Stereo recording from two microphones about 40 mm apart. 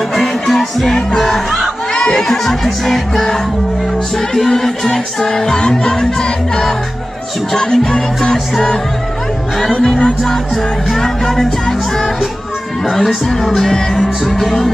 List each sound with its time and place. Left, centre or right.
0.1 s music: centre
9.8 s music: left
10.2 s music: centre